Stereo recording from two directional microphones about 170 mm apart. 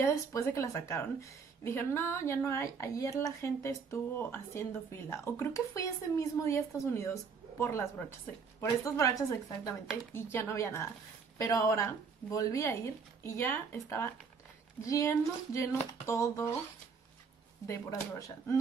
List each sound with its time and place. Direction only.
0.0 s a woman's voice: 15° left (ahead or behind)